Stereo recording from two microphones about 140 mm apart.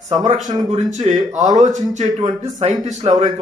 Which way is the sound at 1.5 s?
60° right (ahead or behind).